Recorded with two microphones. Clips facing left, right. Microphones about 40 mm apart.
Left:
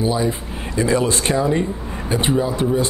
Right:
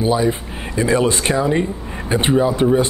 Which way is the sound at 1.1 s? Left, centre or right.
Centre.